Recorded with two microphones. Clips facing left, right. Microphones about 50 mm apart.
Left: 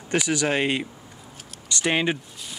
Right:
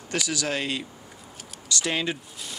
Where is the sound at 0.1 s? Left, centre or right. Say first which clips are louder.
Left 5 dB; left.